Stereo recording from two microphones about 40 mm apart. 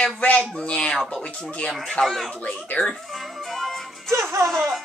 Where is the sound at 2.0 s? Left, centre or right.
Centre.